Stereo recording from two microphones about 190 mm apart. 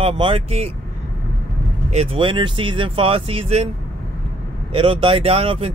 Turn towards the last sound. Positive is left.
turn(degrees=-30)  # may be behind; listen again after turning